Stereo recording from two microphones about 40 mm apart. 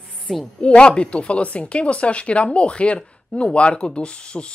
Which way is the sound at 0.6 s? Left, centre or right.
Left.